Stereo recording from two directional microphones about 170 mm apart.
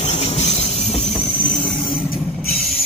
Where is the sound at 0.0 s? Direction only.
40° left (ahead or behind).